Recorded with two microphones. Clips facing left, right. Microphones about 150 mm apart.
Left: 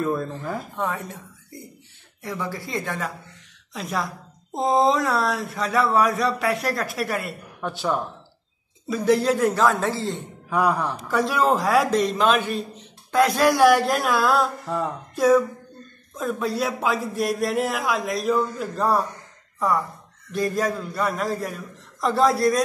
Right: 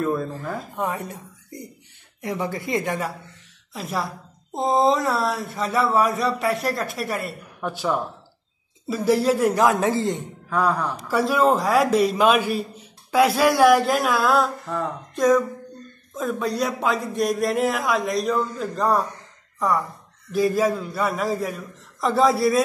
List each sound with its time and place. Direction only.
0.0 s speech: centre (ahead or behind)
2.2 s speech: 20° right (ahead or behind)
3.7 s a woman's voice: centre (ahead or behind)
10.5 s a man's voice: 15° left (ahead or behind)
11.1 s a woman's voice: centre (ahead or behind)